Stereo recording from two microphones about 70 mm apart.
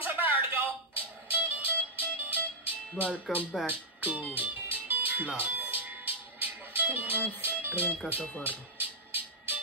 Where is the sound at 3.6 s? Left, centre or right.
Right.